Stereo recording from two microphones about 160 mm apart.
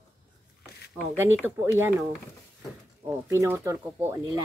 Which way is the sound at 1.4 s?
15° right (ahead or behind).